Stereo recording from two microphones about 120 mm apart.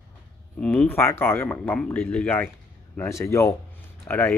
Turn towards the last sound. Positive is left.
turn(degrees=15)  # may be behind; listen again after turning